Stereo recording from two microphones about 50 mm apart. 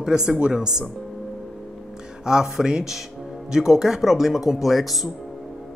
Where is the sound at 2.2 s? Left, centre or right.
Centre.